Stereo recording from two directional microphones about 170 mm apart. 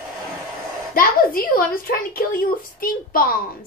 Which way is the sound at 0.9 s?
55° left (ahead or behind).